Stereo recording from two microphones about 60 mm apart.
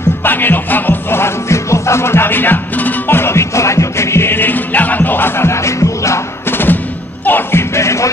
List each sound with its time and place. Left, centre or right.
0.2 s music: left
5.5 s music: left
6.5 s music: left
7.7 s music: left